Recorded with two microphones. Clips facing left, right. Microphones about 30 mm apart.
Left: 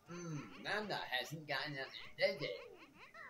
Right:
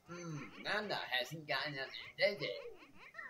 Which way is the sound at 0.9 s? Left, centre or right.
Right.